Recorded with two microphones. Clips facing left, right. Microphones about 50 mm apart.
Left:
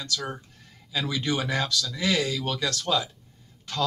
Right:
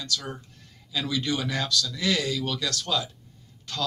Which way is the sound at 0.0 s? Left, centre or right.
Left.